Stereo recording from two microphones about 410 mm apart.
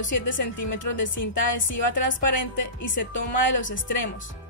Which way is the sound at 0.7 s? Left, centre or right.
Left.